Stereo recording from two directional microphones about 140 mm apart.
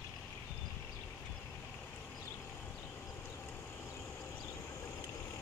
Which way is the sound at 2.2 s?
15° left (ahead or behind).